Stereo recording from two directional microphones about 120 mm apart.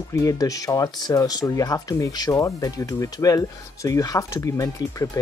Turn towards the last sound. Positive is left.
turn(degrees=30)  # may be behind; listen again after turning